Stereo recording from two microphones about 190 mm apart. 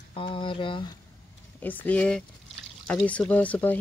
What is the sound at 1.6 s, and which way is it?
Speech, 10° left (ahead or behind).